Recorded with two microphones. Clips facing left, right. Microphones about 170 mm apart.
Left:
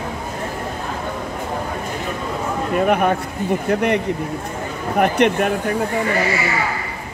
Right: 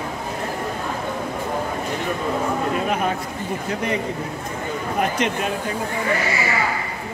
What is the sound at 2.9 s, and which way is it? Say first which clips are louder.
Speech: left 5 dB; 60° left (ahead or behind).